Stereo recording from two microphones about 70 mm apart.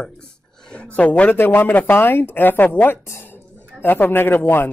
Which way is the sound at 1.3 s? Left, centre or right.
Left.